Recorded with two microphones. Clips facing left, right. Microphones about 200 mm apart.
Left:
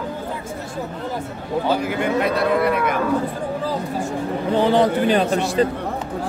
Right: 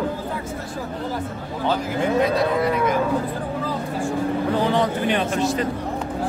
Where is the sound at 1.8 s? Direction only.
65° left (ahead or behind).